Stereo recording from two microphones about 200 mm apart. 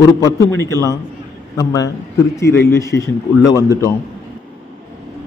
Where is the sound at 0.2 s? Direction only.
15° left (ahead or behind).